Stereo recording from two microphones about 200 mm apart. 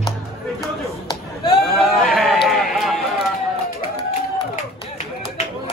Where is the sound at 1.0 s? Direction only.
20° left (ahead or behind).